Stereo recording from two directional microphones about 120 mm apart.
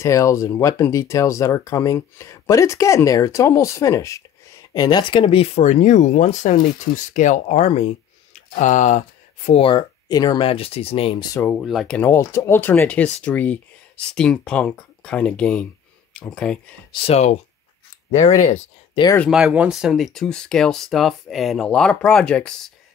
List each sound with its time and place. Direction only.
0.0 s speech: 25° left (ahead or behind); by 9.0 s 90° left
9.5 s speech: 45° left (ahead or behind)
10.4 s speech: 50° left (ahead or behind)
11.6 s speech: centre (ahead or behind)
12.0 s speech: 20° left (ahead or behind)
16.9 s speech: 55° left (ahead or behind)
18.1 s speech: 85° left
19.0 s speech: 50° left (ahead or behind)
19.3 s speech: 10° right (ahead or behind); by 22.7 s 10° left (ahead or behind)